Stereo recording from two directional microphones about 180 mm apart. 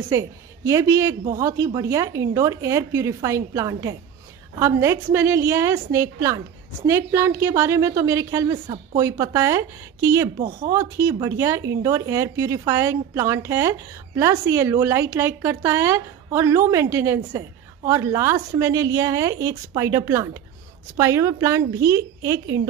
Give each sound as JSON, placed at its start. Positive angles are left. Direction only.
{"t": 0.1, "sound": "a woman's voice", "side_deg": -15}
{"t": 10.3, "sound": "speech", "side_deg": -40}
{"t": 10.7, "sound": "a woman's voice", "side_deg": -15}